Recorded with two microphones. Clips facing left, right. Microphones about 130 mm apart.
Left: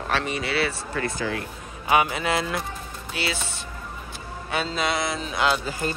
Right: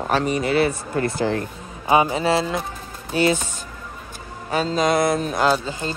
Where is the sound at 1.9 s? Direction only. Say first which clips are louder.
Right 4 dB; 30° right (ahead or behind).